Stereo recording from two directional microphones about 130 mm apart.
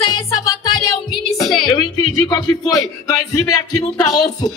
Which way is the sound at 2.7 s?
25° left (ahead or behind).